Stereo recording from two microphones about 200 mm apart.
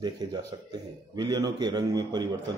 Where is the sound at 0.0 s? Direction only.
20° right (ahead or behind).